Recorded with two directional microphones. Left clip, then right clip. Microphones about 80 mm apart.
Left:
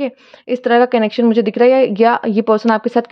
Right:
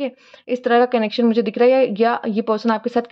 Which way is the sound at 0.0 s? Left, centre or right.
Left.